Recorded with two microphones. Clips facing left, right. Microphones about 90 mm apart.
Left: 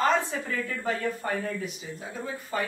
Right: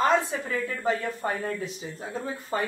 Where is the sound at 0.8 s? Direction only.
25° right (ahead or behind).